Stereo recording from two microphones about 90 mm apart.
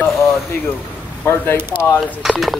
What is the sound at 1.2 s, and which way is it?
Speech, 25° left (ahead or behind).